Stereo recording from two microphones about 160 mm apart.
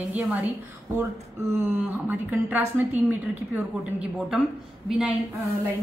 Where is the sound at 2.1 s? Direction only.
10° right (ahead or behind).